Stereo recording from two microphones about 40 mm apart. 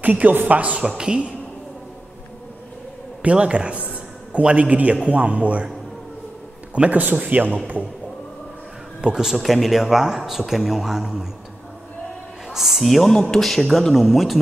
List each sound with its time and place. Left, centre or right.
0.0 s speech: right
0.8 s a woman's voice: centre
3.3 s a woman's voice: right
6.9 s a man's voice: right
9.0 s a man's voice: centre
9.4 s a man's voice: centre
12.4 s a sound: centre
12.8 s a man's voice: centre